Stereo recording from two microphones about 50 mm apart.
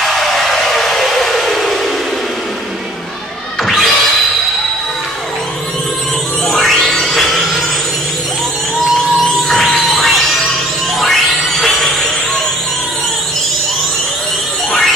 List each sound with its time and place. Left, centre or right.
0.0 s a sound: centre
3.6 s music: centre
6.4 s music: centre
9.5 s music: centre
14.7 s music: centre